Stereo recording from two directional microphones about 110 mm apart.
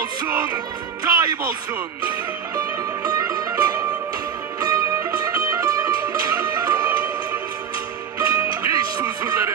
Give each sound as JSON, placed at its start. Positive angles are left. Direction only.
{"t": 1.0, "sound": "speech", "side_deg": -35}
{"t": 2.5, "sound": "music", "side_deg": -35}
{"t": 8.2, "sound": "music", "side_deg": -30}